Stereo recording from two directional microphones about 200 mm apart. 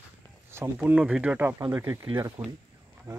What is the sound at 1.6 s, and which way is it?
Speech, 20° right (ahead or behind).